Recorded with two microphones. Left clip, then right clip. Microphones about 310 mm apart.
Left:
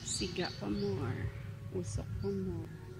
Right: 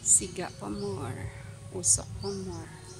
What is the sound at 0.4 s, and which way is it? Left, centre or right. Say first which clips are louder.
Speech: right 2 dB; centre.